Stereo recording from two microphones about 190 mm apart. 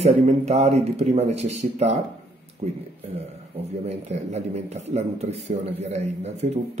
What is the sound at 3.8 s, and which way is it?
Speech, 35° right (ahead or behind).